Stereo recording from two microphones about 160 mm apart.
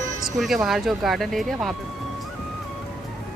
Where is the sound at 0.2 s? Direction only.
Centre (ahead or behind).